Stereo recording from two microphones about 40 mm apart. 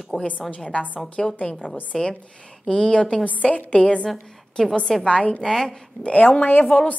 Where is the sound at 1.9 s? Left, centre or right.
Centre.